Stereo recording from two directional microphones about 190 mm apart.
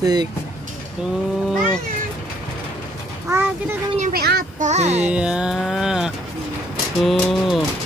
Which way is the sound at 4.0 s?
50° right (ahead or behind).